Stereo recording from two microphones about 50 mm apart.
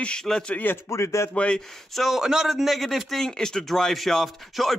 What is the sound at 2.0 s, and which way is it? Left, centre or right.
Speech, centre.